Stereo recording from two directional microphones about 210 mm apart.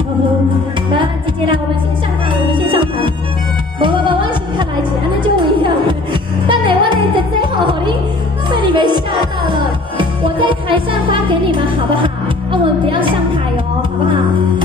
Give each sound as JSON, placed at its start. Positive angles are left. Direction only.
{"t": 2.3, "sound": "music", "side_deg": -25}
{"t": 5.4, "sound": "music", "side_deg": -25}